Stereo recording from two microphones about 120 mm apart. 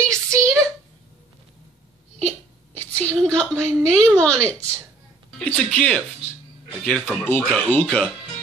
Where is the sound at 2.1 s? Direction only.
10° left (ahead or behind).